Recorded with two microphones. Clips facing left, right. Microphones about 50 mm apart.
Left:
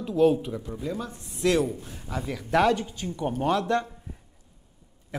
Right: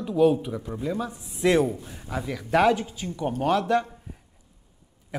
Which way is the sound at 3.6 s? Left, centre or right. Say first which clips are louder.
Right 2 dB; centre.